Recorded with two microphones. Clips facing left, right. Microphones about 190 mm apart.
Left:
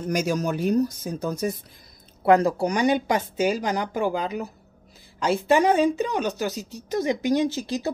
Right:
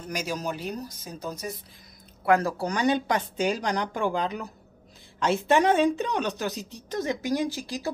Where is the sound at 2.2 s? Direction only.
20° left (ahead or behind).